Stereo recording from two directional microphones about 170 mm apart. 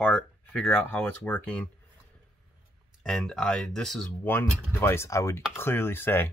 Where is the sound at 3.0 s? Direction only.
5° left (ahead or behind).